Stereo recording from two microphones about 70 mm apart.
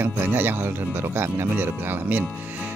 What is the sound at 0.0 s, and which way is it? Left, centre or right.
Music, right.